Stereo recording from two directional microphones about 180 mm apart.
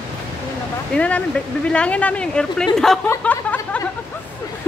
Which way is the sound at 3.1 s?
10° left (ahead or behind).